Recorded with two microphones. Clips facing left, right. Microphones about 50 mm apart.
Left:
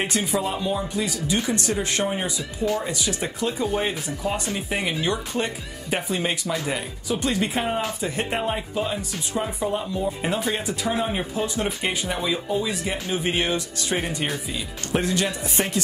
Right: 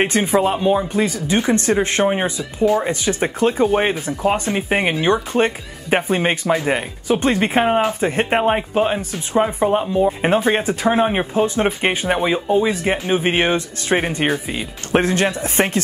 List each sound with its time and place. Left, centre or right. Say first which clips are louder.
0.0 s speech: right 8 dB; right